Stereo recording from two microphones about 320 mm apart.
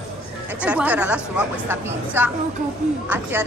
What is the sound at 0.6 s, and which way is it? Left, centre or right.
A woman's voice, centre.